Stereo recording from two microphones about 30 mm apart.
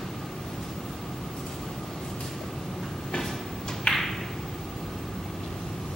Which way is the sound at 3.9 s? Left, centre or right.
Left.